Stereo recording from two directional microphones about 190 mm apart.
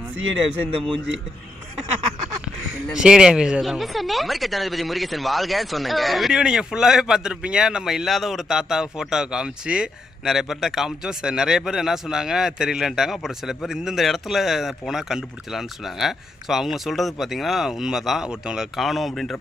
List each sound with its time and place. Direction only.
2.9 s speech: 5° right (ahead or behind)